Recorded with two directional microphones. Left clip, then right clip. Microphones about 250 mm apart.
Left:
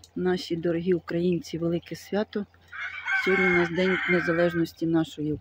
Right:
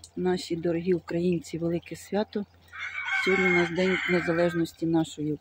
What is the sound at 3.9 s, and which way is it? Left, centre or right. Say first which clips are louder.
Speech: left 2 dB; left.